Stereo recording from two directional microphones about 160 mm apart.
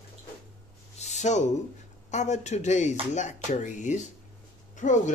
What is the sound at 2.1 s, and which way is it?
Speech, 45° left (ahead or behind).